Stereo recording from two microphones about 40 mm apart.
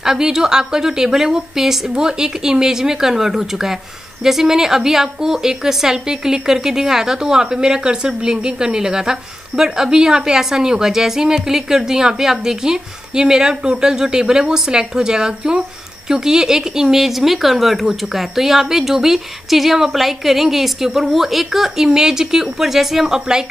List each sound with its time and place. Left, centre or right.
0.0 s a woman's voice: centre